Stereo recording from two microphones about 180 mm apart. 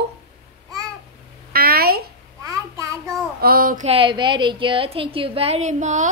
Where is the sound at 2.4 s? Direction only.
15° right (ahead or behind).